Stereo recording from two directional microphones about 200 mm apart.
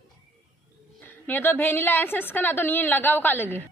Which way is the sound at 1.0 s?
10° left (ahead or behind).